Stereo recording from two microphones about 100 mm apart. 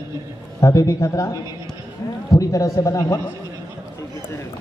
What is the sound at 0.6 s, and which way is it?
A man's voice, 30° left (ahead or behind).